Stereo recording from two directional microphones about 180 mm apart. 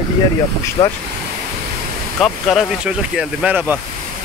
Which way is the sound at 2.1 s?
5° left (ahead or behind).